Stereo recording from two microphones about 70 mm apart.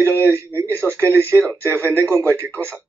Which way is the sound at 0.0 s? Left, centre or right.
Right.